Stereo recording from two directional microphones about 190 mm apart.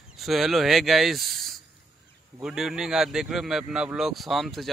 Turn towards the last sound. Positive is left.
turn(degrees=0)  # may be behind; listen again after turning